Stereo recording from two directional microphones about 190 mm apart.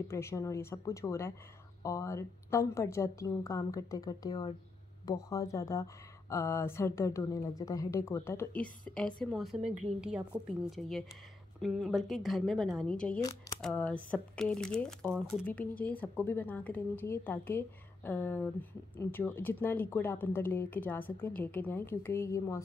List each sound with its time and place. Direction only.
0.1 s a woman's voice: 15° left (ahead or behind)